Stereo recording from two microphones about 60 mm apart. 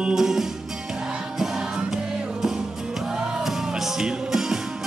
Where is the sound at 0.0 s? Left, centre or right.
Centre.